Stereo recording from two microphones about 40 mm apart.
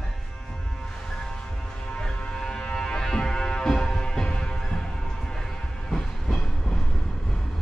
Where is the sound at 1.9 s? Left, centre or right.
Left.